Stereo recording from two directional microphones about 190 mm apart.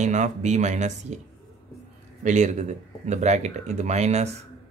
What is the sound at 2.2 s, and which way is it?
Speech, 40° right (ahead or behind).